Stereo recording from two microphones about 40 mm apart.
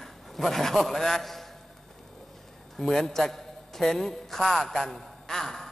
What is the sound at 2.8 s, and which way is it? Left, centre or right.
A man's voice, centre.